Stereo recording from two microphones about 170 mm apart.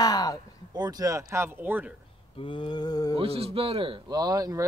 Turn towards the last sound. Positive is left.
turn(degrees=-20)  # may be behind; listen again after turning